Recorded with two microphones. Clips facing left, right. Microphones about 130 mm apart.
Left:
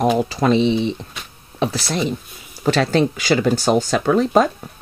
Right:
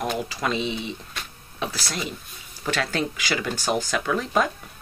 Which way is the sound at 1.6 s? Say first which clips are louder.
Left 9 dB; 30° left (ahead or behind).